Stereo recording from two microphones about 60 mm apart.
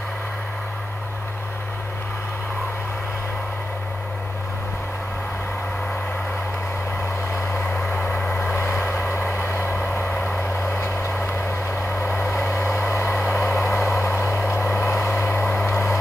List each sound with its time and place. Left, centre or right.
7.9 s vehicle: left
8.3 s vehicle: left
15.7 s vehicle: left